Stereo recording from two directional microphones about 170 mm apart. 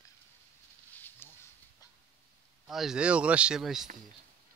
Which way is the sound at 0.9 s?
10° left (ahead or behind).